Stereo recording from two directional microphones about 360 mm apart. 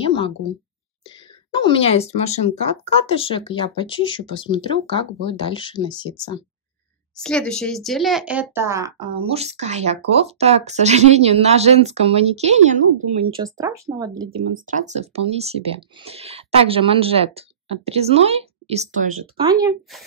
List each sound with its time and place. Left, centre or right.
0.0 s a sound: centre
1.0 s speech: centre
14.5 s speech: right
19.6 s a woman's voice: centre